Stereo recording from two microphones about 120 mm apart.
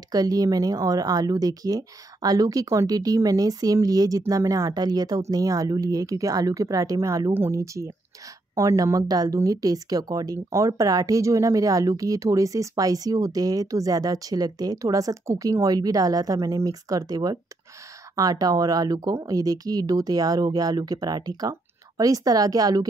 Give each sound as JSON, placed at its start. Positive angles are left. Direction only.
{"t": 0.1, "sound": "speech", "side_deg": -30}